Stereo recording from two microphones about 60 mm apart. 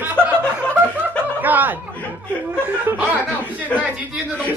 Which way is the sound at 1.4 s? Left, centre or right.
Right.